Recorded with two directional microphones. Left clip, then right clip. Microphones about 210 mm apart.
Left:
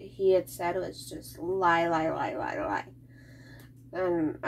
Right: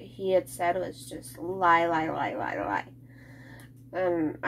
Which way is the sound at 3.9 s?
25° right (ahead or behind).